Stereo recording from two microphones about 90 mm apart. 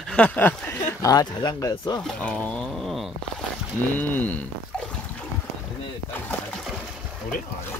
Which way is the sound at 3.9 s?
20° left (ahead or behind).